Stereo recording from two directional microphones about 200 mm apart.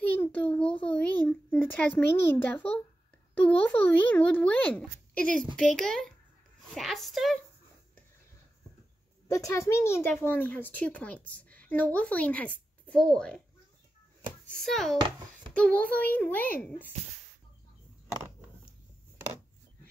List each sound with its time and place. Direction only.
0.0 s a sound: 10° left (ahead or behind)
0.9 s a child's voice: 5° left (ahead or behind)
9.3 s a woman's voice: 15° left (ahead or behind)
14.5 s a woman's voice: centre (ahead or behind)
15.0 s a child's voice: 20° right (ahead or behind)
15.5 s a child's voice: 5° left (ahead or behind)